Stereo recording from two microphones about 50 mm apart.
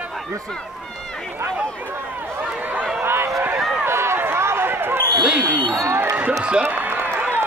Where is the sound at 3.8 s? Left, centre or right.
Right.